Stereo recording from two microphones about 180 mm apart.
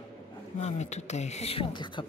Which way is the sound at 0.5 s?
40° left (ahead or behind).